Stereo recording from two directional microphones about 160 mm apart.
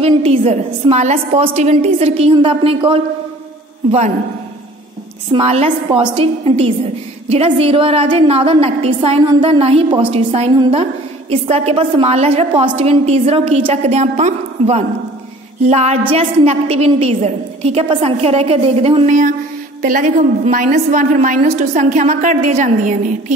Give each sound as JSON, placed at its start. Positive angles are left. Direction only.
{"t": 0.0, "sound": "a woman's voice", "side_deg": -40}
{"t": 5.3, "sound": "a woman's voice", "side_deg": -40}
{"t": 19.8, "sound": "a woman's voice", "side_deg": -55}